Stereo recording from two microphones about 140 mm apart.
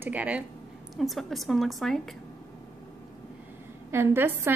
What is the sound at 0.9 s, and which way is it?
A woman's voice, centre (ahead or behind).